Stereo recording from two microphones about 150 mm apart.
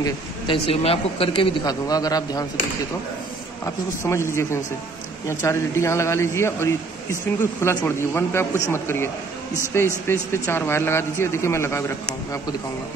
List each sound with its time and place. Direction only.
0.5 s speech: 40° left (ahead or behind)
1.6 s a man's voice: 25° left (ahead or behind)
3.6 s a man's voice: 20° left (ahead or behind)